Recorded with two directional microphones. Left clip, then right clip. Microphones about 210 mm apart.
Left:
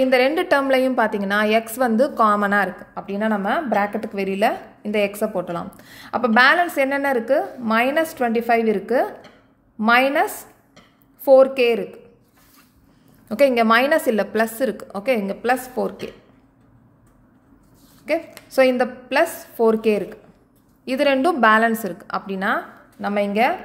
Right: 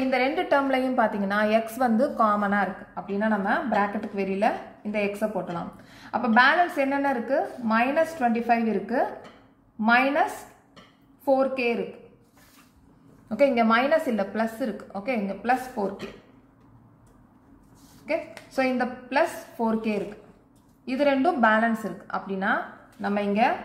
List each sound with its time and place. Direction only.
0.1 s a woman's voice: 50° left (ahead or behind)
11.2 s a woman's voice: 50° left (ahead or behind)
13.3 s a woman's voice: 50° left (ahead or behind)
18.5 s a woman's voice: 50° left (ahead or behind)